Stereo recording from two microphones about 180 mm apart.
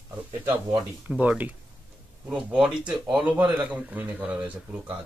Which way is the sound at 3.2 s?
25° right (ahead or behind).